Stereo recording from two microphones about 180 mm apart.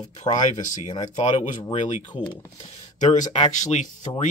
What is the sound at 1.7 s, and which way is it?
Speech, 35° left (ahead or behind).